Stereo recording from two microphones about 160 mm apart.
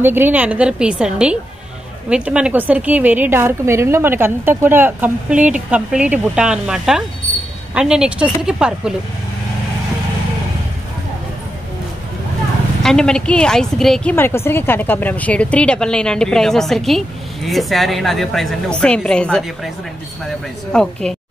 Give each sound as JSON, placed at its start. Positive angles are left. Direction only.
{"t": 0.0, "sound": "a woman's voice", "side_deg": -15}
{"t": 12.8, "sound": "a woman's voice", "side_deg": 5}
{"t": 14.1, "sound": "a woman's voice", "side_deg": 15}
{"t": 20.7, "sound": "a woman's voice", "side_deg": 5}